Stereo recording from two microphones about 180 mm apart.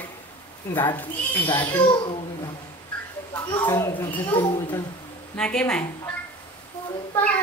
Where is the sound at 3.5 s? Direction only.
15° left (ahead or behind).